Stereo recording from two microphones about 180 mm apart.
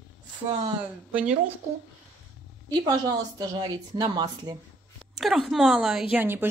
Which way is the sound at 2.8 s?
20° right (ahead or behind).